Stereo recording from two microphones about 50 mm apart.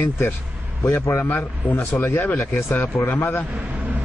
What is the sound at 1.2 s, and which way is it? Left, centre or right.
Speech, left.